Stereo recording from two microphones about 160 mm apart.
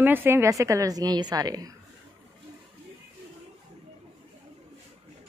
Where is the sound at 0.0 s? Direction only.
15° right (ahead or behind).